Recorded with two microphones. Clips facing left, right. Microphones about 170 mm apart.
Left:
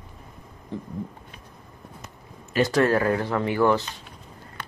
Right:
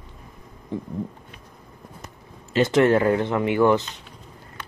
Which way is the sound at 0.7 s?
15° right (ahead or behind).